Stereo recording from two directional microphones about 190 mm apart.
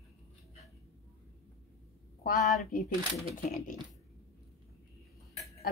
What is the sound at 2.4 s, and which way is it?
Speech, centre (ahead or behind).